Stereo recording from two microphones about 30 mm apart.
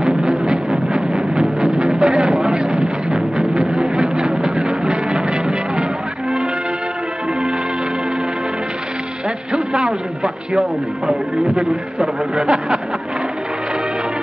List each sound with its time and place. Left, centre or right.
0.0 s music: right
9.5 s a sound: right
11.1 s speech: right